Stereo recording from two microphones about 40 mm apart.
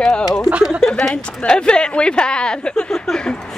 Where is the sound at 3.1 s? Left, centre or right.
Left.